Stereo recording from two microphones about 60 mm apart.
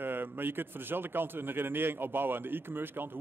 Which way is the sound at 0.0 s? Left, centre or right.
Right.